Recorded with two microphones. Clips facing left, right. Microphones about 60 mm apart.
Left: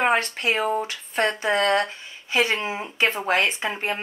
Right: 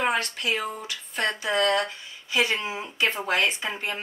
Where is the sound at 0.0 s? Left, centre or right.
Left.